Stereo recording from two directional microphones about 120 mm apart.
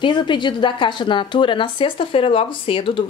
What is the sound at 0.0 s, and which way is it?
Speech, 40° left (ahead or behind).